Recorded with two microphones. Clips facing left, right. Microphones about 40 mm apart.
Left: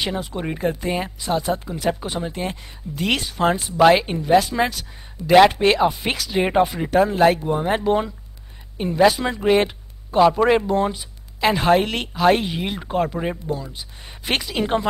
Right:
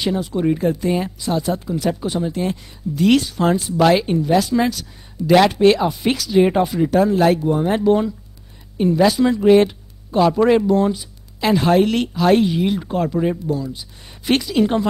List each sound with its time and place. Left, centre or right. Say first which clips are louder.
0.0 s speech: right 6 dB; centre